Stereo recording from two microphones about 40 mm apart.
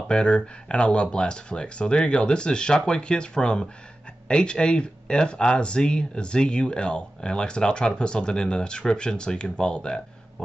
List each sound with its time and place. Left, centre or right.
0.1 s speech: left